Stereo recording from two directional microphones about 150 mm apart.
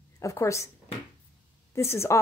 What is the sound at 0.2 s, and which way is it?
Speech, 20° left (ahead or behind).